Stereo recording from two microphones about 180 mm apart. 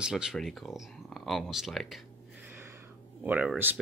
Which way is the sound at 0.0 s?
5° right (ahead or behind).